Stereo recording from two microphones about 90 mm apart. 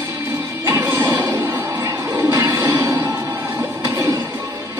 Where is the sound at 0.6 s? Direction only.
35° right (ahead or behind).